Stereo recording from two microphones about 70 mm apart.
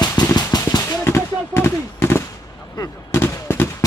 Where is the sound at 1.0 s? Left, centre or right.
Left.